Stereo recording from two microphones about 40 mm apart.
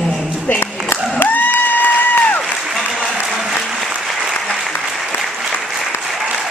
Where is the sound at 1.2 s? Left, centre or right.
Left.